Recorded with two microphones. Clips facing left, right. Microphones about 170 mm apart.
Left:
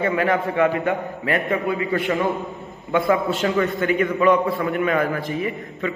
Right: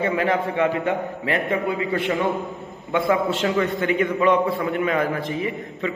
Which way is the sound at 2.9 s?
25° right (ahead or behind).